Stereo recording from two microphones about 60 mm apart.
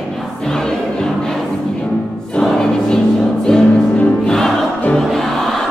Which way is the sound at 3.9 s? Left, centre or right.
Left.